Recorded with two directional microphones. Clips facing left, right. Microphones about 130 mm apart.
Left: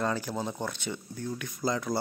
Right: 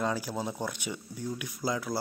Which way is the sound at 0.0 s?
10° right (ahead or behind).